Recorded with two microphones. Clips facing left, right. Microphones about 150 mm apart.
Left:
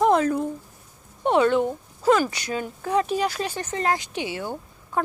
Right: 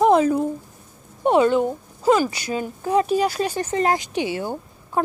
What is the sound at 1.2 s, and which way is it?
Speech, 5° right (ahead or behind).